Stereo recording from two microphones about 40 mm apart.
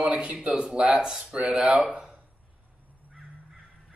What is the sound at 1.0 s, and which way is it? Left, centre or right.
Speech, centre.